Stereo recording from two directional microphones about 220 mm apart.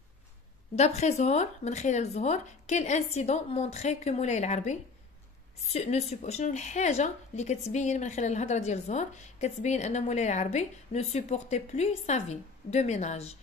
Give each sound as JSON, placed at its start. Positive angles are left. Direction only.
{"t": 0.7, "sound": "a woman's voice", "side_deg": 30}